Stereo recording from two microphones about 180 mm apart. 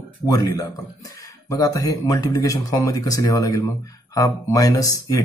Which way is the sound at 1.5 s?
20° left (ahead or behind).